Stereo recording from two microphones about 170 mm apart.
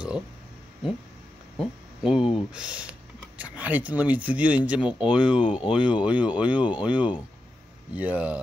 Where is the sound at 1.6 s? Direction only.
5° right (ahead or behind).